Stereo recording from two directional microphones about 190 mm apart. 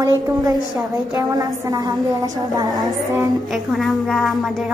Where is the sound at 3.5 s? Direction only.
Centre (ahead or behind).